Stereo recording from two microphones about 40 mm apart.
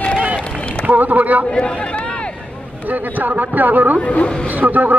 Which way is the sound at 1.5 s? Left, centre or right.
Left.